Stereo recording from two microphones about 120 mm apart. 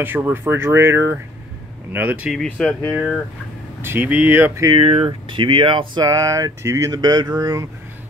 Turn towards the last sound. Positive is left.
turn(degrees=-30)  # may be behind; listen again after turning